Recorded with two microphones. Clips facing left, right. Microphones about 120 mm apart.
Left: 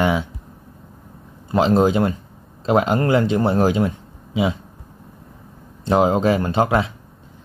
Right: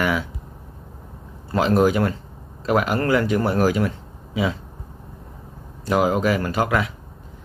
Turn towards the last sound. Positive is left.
turn(degrees=25)  # may be behind; listen again after turning